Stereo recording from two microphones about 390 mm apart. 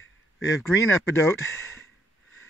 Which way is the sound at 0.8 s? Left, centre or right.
Centre.